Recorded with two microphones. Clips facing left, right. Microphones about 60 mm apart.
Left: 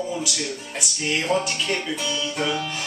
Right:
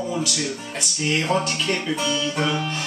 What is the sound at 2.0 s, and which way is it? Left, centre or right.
Music, right.